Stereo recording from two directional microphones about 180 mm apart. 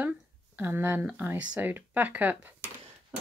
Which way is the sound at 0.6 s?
10° right (ahead or behind).